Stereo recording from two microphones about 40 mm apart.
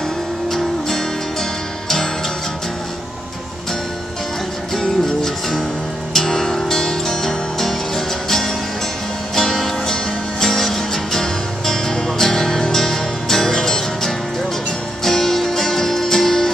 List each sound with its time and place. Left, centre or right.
0.5 s music: centre
4.7 s music: centre